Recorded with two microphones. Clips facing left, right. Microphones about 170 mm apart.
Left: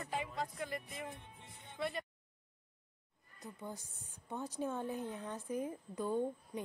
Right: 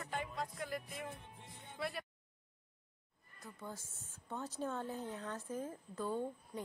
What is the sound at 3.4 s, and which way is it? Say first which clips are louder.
A woman's voice: left 2 dB; 15° left (ahead or behind).